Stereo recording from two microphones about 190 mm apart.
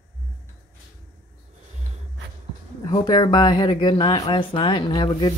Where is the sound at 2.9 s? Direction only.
25° left (ahead or behind).